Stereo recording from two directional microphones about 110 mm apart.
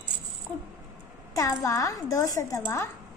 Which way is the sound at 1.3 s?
30° left (ahead or behind).